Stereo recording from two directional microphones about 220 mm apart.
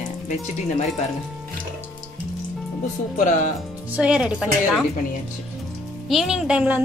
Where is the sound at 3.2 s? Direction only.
35° left (ahead or behind).